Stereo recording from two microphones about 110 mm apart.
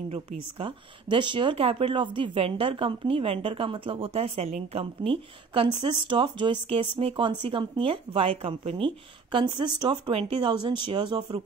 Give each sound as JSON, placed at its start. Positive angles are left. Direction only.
{"t": 0.1, "sound": "speech", "side_deg": -50}